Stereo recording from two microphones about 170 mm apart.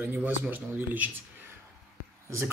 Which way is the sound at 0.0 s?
10° right (ahead or behind).